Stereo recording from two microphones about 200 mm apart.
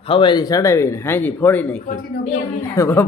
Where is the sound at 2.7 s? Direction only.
10° left (ahead or behind).